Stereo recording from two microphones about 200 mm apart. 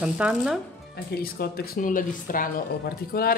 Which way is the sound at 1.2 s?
50° left (ahead or behind).